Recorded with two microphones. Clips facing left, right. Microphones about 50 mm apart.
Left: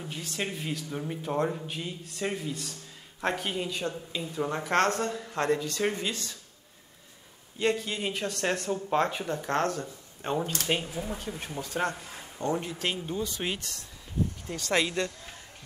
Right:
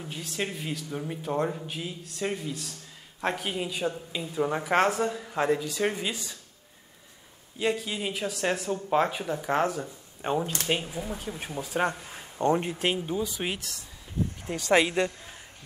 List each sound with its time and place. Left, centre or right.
0.0 s speech: centre
7.5 s speech: centre
12.4 s speech: right; by 13.8 s centre
14.6 s speech: centre